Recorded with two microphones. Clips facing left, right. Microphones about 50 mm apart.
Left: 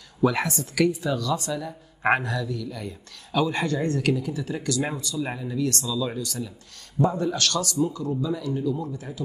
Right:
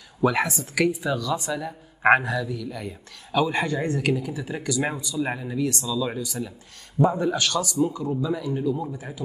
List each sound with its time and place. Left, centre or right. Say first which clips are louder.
0.2 s speech: right 1 dB; centre